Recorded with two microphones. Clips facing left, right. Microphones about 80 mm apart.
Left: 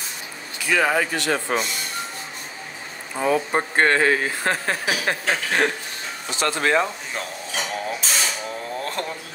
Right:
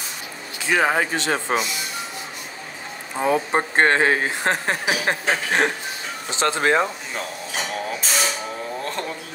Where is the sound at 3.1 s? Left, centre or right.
Centre.